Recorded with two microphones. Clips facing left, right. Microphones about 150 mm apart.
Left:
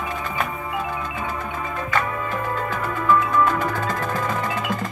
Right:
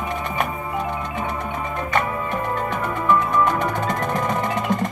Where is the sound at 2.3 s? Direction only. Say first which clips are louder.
Right 1 dB; 20° right (ahead or behind).